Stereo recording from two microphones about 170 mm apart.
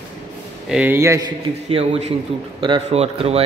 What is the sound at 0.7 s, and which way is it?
Speech, 10° right (ahead or behind).